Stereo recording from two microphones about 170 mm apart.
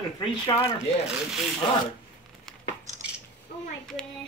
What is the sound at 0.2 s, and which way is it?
Speech, 25° left (ahead or behind).